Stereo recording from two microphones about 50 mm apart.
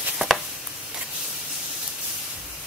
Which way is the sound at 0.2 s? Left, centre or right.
Right.